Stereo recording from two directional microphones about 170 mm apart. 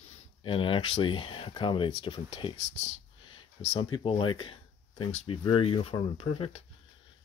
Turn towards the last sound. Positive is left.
turn(degrees=35)  # may be behind; listen again after turning